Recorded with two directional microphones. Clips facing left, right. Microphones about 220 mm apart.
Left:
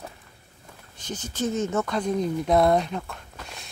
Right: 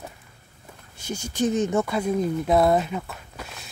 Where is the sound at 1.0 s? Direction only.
10° right (ahead or behind).